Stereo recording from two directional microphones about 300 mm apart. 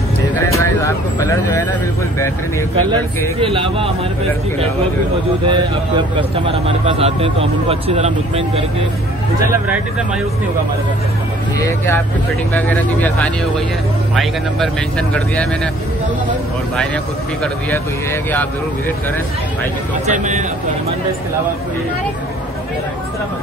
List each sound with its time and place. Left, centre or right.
0.5 s music: centre
3.3 s speech: centre
5.5 s speech: centre
11.6 s speech: centre
16.7 s speech: centre
20.1 s speech: right